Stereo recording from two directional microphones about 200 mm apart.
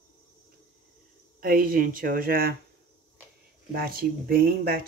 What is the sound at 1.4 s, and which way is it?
Speech, 45° right (ahead or behind).